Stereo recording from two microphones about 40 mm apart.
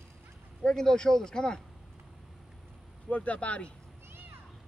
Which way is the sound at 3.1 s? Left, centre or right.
Left.